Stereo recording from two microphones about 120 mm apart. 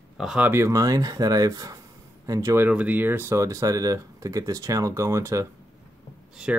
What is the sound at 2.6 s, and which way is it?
Speech, 15° right (ahead or behind).